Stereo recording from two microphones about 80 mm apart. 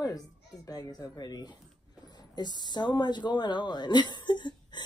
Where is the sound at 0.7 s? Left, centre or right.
Left.